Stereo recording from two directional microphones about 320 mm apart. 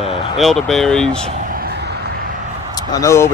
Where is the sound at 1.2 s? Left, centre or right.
Right.